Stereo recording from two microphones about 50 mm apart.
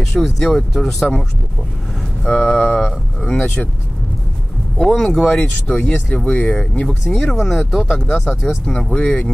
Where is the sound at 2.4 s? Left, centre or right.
Centre.